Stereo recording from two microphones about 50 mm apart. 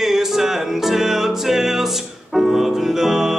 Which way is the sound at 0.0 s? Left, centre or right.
Centre.